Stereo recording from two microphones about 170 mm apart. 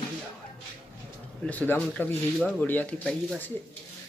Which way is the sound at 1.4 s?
10° left (ahead or behind).